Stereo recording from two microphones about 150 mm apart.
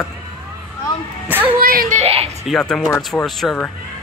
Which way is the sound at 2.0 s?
45° right (ahead or behind).